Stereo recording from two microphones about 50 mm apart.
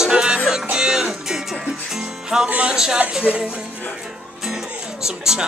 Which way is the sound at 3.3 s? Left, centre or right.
Right.